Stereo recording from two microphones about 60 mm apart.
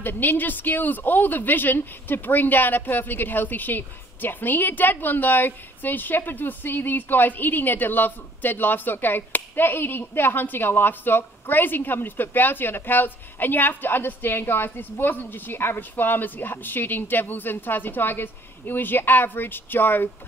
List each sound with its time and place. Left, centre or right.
0.0 s a woman's voice: left